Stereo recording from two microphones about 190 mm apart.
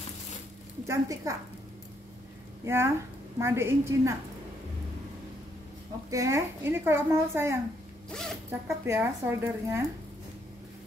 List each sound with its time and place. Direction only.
0.8 s a woman's voice: 15° right (ahead or behind)
2.6 s a woman's voice: 15° right (ahead or behind)
6.0 s a woman's voice: 15° right (ahead or behind)
8.1 s speech: 5° left (ahead or behind)
8.5 s a woman's voice: 10° right (ahead or behind)